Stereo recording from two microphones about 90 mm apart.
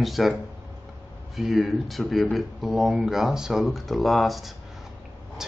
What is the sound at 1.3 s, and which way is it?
Speech, centre (ahead or behind).